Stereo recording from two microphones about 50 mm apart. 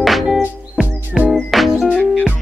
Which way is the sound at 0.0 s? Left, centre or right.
Centre.